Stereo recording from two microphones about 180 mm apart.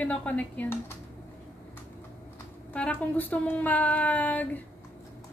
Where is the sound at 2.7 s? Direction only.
10° left (ahead or behind).